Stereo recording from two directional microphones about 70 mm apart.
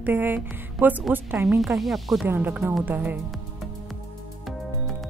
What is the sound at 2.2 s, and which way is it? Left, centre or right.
Speech, right.